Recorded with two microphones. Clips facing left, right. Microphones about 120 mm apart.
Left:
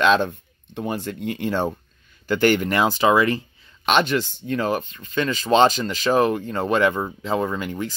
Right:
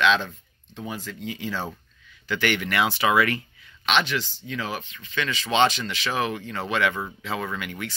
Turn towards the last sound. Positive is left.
turn(degrees=35)  # may be behind; listen again after turning